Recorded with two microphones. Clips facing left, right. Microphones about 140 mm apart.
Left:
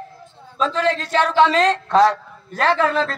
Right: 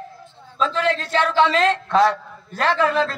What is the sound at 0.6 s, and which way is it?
A man's voice, 40° left (ahead or behind).